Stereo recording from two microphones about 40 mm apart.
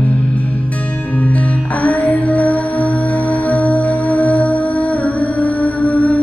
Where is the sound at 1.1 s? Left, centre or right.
Left.